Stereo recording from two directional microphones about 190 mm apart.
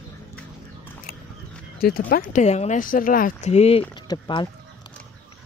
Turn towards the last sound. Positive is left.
turn(degrees=25)  # may be behind; listen again after turning